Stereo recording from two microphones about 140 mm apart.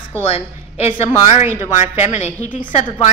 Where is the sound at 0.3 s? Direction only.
45° left (ahead or behind).